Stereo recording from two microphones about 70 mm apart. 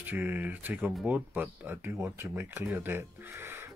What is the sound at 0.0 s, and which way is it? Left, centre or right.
Speech, right.